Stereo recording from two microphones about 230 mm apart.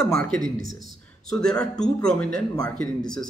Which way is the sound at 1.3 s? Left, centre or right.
Centre.